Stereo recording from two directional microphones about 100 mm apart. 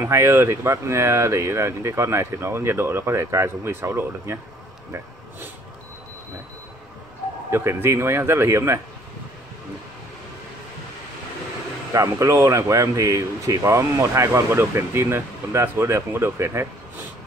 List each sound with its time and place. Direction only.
0.0 s speech: 25° right (ahead or behind)
7.5 s speech: 25° right (ahead or behind)
11.9 s speech: 30° right (ahead or behind)